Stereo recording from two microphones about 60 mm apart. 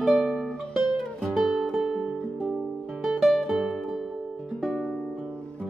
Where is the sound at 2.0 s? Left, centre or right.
Centre.